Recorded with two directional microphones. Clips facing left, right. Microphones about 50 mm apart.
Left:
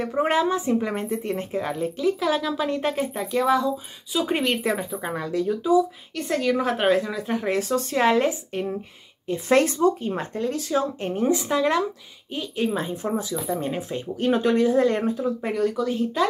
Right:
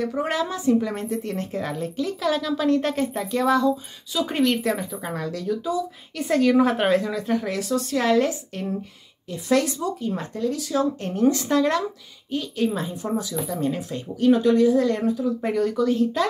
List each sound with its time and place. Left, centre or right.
0.0 s speech: left
6.1 s speech: centre
7.4 s speech: left
9.3 s speech: left; by 12.6 s centre
12.6 s speech: left
14.1 s speech: left
15.4 s speech: centre